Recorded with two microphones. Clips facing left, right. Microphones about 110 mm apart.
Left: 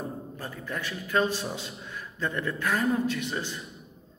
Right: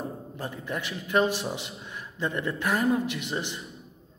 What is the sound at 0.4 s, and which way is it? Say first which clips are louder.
A man's voice: right 4 dB; 20° right (ahead or behind).